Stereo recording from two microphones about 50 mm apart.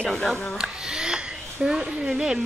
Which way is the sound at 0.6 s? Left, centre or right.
Centre.